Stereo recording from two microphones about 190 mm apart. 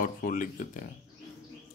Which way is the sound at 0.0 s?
45° left (ahead or behind).